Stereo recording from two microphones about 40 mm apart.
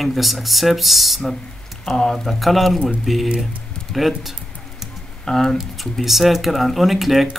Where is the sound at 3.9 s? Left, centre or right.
Centre.